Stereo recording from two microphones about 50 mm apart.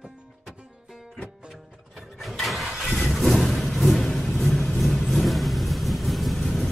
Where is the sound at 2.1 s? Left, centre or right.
Centre.